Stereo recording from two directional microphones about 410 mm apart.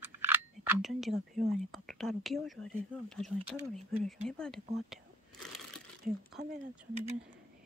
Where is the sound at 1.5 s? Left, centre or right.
Centre.